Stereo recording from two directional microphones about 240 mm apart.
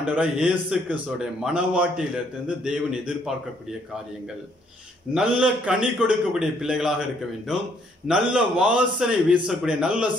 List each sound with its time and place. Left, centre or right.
0.0 s a man's voice: centre
5.1 s a man's voice: centre